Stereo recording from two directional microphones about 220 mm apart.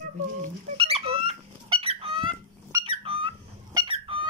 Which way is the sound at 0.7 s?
25° right (ahead or behind).